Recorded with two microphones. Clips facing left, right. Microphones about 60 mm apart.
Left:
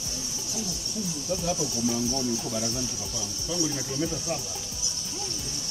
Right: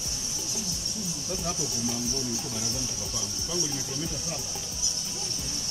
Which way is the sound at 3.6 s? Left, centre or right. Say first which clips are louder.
Left 6 dB; left.